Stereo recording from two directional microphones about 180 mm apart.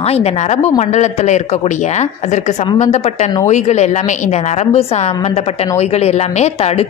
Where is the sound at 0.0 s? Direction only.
35° left (ahead or behind).